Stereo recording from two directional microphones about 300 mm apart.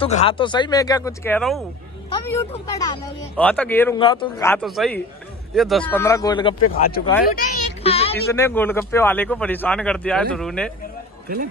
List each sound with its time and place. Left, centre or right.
0.0 s speech: centre
6.6 s speech: left
7.3 s speech: centre
8.4 s speech: centre